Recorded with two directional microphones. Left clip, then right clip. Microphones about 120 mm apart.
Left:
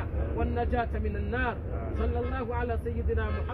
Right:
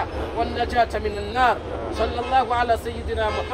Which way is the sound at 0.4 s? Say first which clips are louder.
Right 9 dB; 35° right (ahead or behind).